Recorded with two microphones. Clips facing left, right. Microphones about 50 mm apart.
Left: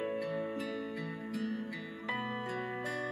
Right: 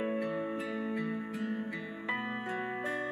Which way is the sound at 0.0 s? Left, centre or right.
Centre.